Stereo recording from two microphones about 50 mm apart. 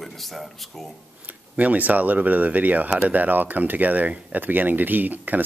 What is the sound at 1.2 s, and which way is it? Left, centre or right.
Speech, right.